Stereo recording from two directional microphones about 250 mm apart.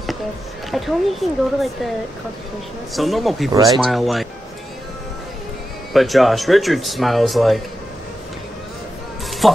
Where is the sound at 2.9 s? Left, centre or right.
Centre.